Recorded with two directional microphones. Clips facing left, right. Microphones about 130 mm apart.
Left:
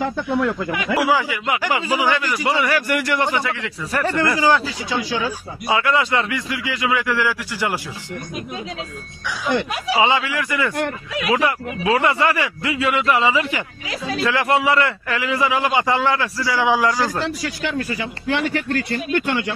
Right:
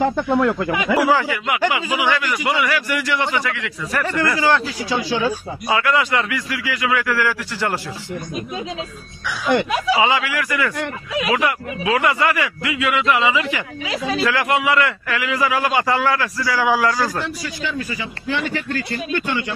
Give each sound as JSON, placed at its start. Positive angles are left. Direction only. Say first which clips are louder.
{"t": 0.3, "sound": "speech", "louder": "even", "side_deg": -70}
{"t": 0.9, "sound": "speech", "louder": "right 1 dB", "side_deg": 5}
{"t": 1.7, "sound": "a man's voice", "louder": "left 1 dB", "side_deg": 35}
{"t": 2.9, "sound": "a man's voice", "louder": "left 1 dB", "side_deg": 50}
{"t": 3.3, "sound": "a man's voice", "louder": "even", "side_deg": 30}
{"t": 4.9, "sound": "speech", "louder": "right 3 dB", "side_deg": -20}
{"t": 5.7, "sound": "a man's voice", "louder": "even", "side_deg": 25}
{"t": 9.9, "sound": "a man's voice", "louder": "left 4 dB", "side_deg": 30}
{"t": 17.2, "sound": "speech", "louder": "left 2 dB", "side_deg": 65}